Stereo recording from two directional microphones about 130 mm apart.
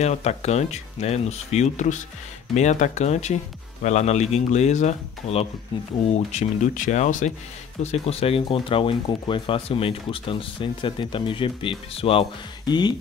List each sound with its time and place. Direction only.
0.0 s speech: 55° left (ahead or behind)
7.8 s speech: 55° left (ahead or behind)
12.6 s speech: 35° left (ahead or behind)